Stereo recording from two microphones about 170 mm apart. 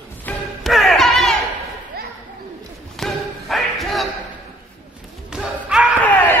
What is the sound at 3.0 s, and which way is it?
Thump, centre (ahead or behind).